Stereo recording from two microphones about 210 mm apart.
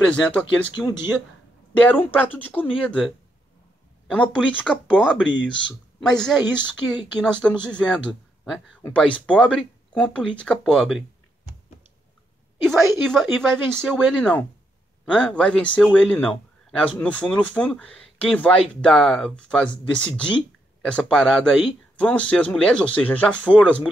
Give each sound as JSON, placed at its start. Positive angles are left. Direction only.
{"t": 0.0, "sound": "speech", "side_deg": 5}
{"t": 0.7, "sound": "speech", "side_deg": 20}
{"t": 1.7, "sound": "speech", "side_deg": 5}
{"t": 4.1, "sound": "a woman's voice", "side_deg": 5}
{"t": 13.0, "sound": "speech", "side_deg": 0}